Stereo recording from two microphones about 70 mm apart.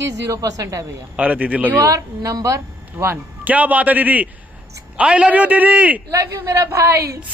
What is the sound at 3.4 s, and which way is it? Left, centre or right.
A man's voice, right.